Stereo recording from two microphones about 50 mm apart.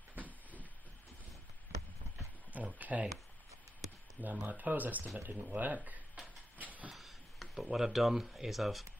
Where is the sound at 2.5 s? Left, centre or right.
Right.